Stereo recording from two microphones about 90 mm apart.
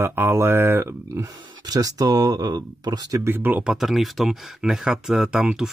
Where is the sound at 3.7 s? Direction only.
5° right (ahead or behind).